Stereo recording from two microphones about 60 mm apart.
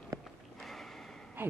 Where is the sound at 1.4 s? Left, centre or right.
Right.